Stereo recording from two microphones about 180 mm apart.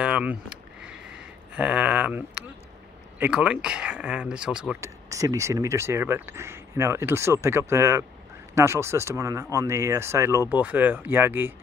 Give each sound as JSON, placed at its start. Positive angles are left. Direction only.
{"t": 0.0, "sound": "a sound", "side_deg": -5}
{"t": 3.2, "sound": "speech", "side_deg": -5}
{"t": 4.7, "sound": "speech", "side_deg": -15}